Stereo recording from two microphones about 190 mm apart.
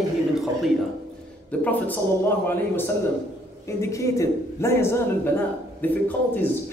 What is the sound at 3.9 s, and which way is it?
A man's voice, 15° left (ahead or behind).